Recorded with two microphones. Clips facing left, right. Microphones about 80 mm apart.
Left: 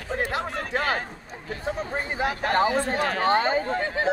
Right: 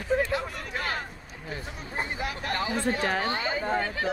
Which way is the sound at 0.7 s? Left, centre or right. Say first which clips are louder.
Left 6 dB; left.